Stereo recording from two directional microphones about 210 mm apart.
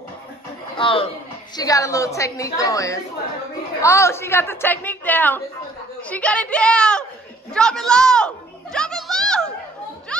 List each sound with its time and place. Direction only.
0.7 s a woman's voice: 25° left (ahead or behind); by 8.3 s 5° left (ahead or behind)
8.7 s music: centre (ahead or behind)